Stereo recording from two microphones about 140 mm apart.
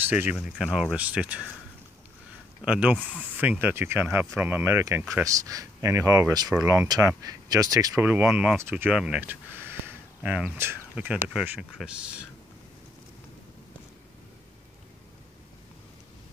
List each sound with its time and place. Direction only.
0.0 s speech: 10° right (ahead or behind)
2.6 s speech: 10° right (ahead or behind)
3.0 s speech: 10° left (ahead or behind)
3.3 s speech: 15° right (ahead or behind)
8.0 s speech: 15° right (ahead or behind)
8.3 s speech: 5° right (ahead or behind)
8.5 s speech: 15° right (ahead or behind)
8.9 s speech: 5° right (ahead or behind)